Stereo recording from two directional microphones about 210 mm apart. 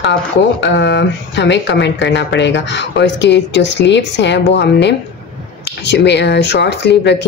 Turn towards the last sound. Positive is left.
turn(degrees=55)  # may be behind; listen again after turning